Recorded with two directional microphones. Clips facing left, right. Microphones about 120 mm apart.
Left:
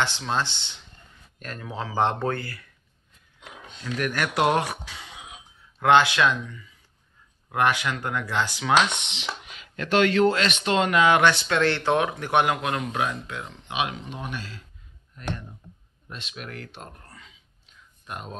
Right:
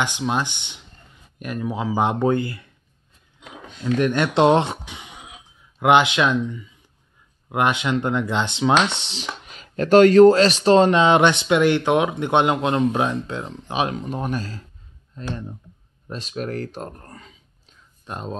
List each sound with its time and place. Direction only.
0.0 s speech: 15° right (ahead or behind)
3.8 s speech: 25° right (ahead or behind); by 14.6 s 40° right (ahead or behind)
15.2 s speech: 25° right (ahead or behind)
16.1 s speech: 35° right (ahead or behind)
18.0 s speech: 30° right (ahead or behind)